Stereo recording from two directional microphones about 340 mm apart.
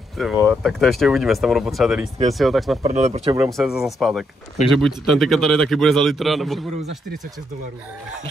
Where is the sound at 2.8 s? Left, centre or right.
Centre.